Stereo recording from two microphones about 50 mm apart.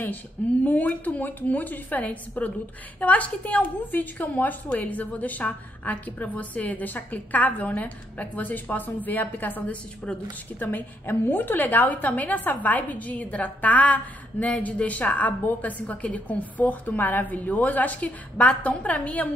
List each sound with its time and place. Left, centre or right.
0.7 s a woman's voice: left